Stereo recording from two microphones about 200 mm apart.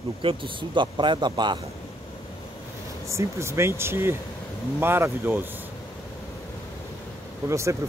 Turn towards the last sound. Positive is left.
turn(degrees=-15)  # may be behind; listen again after turning